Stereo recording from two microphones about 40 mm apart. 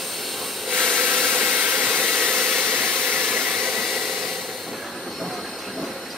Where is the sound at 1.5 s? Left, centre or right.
Right.